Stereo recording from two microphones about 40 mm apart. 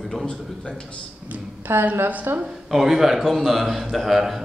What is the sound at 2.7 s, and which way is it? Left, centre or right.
A man's voice, centre.